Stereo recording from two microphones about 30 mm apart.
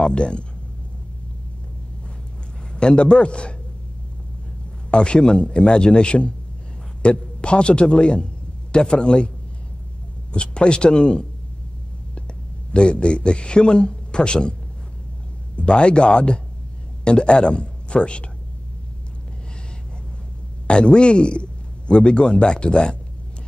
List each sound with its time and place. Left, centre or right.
0.0 s a man's voice: left
2.7 s a man's voice: left
4.9 s a man's voice: left
10.3 s a man's voice: left
12.7 s a man's voice: left
15.5 s a man's voice: left
20.6 s a man's voice: left